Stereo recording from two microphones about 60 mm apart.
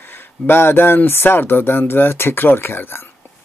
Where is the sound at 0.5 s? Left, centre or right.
Left.